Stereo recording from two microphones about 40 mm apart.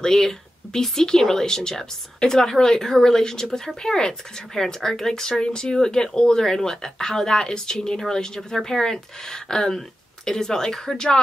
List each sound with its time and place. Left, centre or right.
0.0 s speech: centre